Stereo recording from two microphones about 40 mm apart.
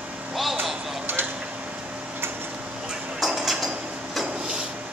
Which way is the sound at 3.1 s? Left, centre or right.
Centre.